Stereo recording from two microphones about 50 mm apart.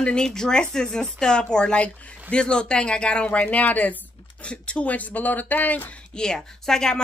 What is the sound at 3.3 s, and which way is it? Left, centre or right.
Speech, left.